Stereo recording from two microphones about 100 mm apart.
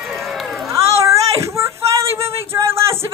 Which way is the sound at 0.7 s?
30° right (ahead or behind).